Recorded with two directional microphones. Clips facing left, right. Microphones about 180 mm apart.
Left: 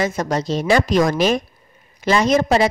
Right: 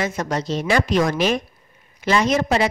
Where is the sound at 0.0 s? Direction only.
40° left (ahead or behind).